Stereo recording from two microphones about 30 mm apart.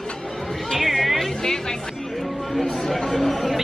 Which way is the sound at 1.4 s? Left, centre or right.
Centre.